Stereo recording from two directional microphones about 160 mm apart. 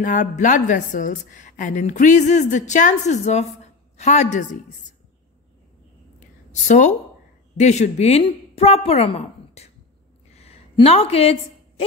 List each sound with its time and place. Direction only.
0.0 s a woman's voice: 55° left (ahead or behind)
6.5 s a woman's voice: 50° left (ahead or behind)
10.3 s a sound: 40° left (ahead or behind)